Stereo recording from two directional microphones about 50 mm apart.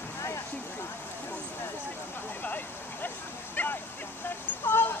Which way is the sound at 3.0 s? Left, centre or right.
Left.